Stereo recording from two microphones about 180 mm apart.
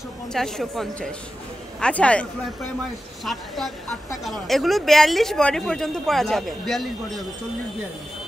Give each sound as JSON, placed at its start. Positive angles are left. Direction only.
{"t": 0.3, "sound": "speech", "side_deg": 0}
{"t": 3.3, "sound": "speech", "side_deg": 0}